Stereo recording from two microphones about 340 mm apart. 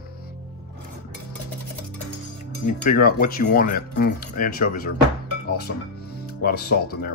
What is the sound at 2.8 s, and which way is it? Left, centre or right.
Speech, left.